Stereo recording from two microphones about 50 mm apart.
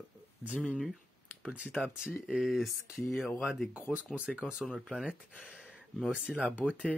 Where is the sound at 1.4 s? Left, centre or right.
Right.